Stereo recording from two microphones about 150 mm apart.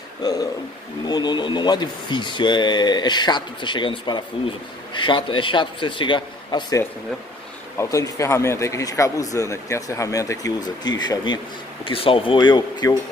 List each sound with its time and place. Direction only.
0.2 s a man's voice: 25° left (ahead or behind)
7.7 s a man's voice: 20° left (ahead or behind)